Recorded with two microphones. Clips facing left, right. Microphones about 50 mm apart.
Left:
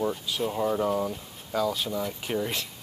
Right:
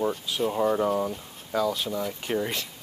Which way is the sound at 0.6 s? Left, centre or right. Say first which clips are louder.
Right 2 dB; centre.